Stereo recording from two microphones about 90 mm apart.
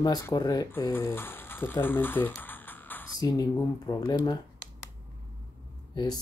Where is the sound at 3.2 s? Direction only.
40° left (ahead or behind).